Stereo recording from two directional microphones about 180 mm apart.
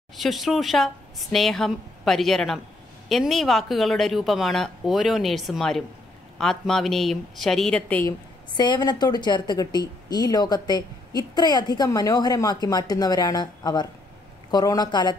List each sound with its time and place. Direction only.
0.2 s speech: centre (ahead or behind)
8.5 s a woman's voice: 25° left (ahead or behind)